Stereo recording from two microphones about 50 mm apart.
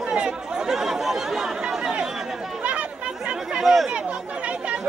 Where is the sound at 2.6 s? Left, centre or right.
Right; by 3.9 s centre.